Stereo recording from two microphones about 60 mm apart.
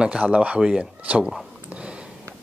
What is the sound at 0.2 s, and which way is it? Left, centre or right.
Speech, right.